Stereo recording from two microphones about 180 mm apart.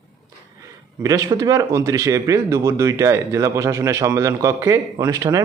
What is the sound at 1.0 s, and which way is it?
A man's voice, 20° right (ahead or behind).